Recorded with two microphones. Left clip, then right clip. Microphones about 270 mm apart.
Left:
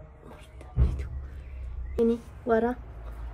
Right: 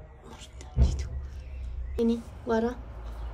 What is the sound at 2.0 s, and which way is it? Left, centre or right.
Speech, centre.